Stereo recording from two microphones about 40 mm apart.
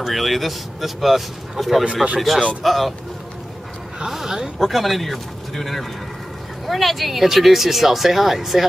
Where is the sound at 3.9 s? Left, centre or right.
Centre.